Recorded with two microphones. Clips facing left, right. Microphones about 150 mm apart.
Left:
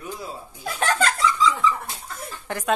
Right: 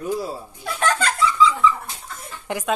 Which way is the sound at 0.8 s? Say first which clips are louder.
Right 1 dB; 40° left (ahead or behind).